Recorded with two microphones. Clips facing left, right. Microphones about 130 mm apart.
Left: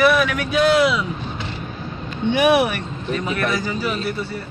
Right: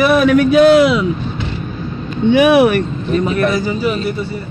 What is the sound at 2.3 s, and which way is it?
Speech, 90° right.